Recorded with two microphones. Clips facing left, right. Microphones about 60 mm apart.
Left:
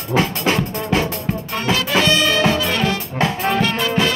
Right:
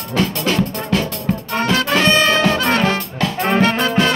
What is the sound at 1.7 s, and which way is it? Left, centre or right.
Music, right.